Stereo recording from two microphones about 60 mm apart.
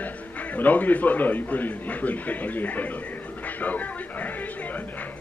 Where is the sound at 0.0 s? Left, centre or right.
Left.